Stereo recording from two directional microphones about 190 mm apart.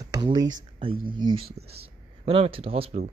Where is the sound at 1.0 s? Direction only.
25° right (ahead or behind).